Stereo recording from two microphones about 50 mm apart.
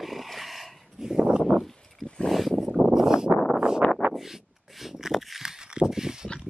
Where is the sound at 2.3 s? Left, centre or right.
Centre.